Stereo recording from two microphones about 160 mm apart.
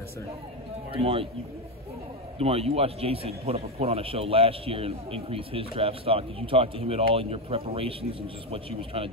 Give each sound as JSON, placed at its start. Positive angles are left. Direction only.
{"t": 0.9, "sound": "speech", "side_deg": -35}
{"t": 2.3, "sound": "speech", "side_deg": -40}